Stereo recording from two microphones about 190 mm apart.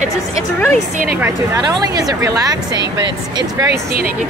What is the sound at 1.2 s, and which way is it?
Speech, 20° right (ahead or behind).